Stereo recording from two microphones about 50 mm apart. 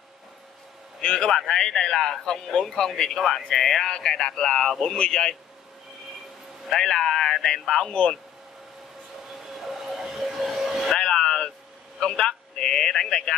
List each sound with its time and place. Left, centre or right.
1.0 s a man's voice: centre
6.7 s a man's voice: centre
9.3 s vehicle: centre
11.0 s a sound: centre